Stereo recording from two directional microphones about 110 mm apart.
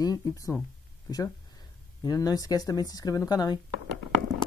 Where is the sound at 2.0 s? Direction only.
35° left (ahead or behind).